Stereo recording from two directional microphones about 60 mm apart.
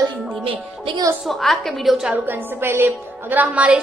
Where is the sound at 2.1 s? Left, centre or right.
Right.